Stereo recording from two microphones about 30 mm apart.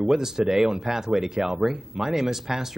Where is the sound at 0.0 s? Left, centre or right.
Centre.